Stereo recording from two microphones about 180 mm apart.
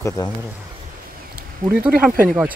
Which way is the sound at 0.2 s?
20° left (ahead or behind).